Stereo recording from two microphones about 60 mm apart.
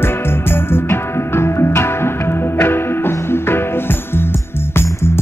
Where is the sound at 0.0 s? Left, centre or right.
Left.